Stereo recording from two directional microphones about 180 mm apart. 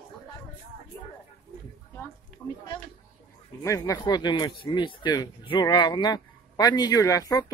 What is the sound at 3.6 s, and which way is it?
Speech, 20° left (ahead or behind).